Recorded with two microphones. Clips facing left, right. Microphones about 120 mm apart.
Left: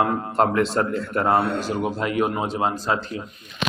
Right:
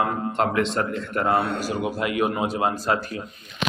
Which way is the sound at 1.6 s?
25° left (ahead or behind).